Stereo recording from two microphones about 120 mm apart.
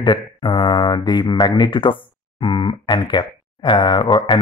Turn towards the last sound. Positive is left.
turn(degrees=40)  # may be behind; listen again after turning